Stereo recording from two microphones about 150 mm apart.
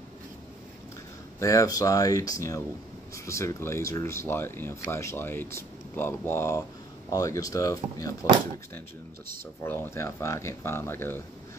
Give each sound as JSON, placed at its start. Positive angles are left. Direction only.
{"t": 1.4, "sound": "speech", "side_deg": 20}
{"t": 9.6, "sound": "speech", "side_deg": 15}